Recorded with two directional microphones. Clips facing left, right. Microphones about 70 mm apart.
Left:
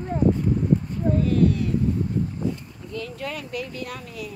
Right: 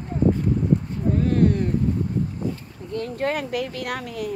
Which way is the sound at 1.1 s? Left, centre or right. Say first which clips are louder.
Right 1 dB; right.